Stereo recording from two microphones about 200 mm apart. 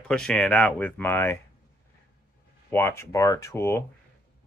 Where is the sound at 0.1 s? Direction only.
5° left (ahead or behind).